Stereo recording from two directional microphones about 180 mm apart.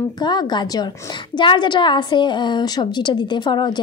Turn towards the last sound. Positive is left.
turn(degrees=25)  # may be behind; listen again after turning